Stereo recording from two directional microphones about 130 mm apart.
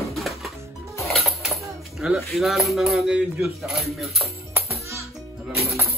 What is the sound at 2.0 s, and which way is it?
Speech, centre (ahead or behind).